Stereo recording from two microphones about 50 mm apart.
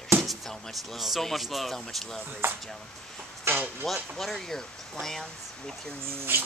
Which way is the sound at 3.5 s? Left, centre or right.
Right.